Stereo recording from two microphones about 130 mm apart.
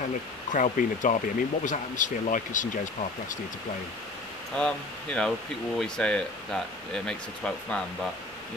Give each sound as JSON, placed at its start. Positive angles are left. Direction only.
{"t": 0.5, "sound": "speech", "side_deg": 80}
{"t": 4.6, "sound": "speech", "side_deg": 5}